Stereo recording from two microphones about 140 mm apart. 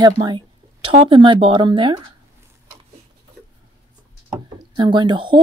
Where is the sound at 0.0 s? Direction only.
30° right (ahead or behind).